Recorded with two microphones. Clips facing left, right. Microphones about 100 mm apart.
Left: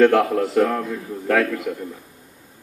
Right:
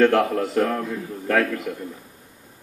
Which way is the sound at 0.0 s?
5° left (ahead or behind).